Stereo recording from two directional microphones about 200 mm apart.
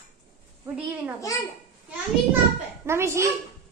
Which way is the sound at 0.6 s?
5° right (ahead or behind).